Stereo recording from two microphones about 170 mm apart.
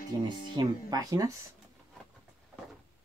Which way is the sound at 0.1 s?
20° right (ahead or behind).